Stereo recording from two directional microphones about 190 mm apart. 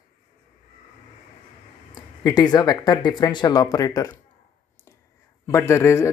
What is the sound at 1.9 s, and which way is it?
Speech, 20° left (ahead or behind).